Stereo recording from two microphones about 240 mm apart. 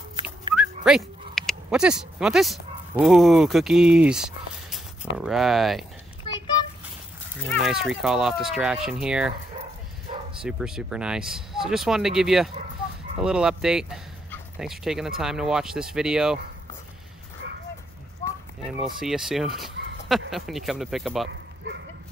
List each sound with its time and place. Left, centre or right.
0.1 s dog: centre
0.6 s dog: centre
3.0 s speech: centre
7.4 s speech: centre
10.1 s bow-wow: right
10.4 s speech: centre
18.9 s speech: centre
21.3 s speech: right